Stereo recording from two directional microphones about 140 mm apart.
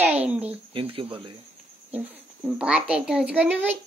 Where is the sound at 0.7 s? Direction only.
40° right (ahead or behind).